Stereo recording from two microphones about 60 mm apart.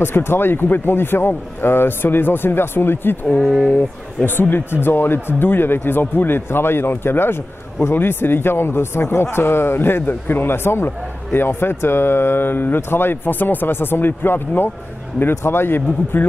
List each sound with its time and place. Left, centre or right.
0.0 s a man's voice: left
3.3 s speech: centre
4.4 s a man's voice: left